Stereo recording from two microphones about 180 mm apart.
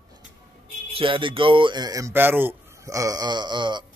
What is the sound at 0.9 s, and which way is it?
Speech, 30° right (ahead or behind).